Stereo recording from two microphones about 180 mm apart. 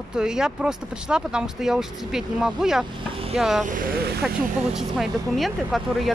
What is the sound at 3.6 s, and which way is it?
Speech, 50° right (ahead or behind).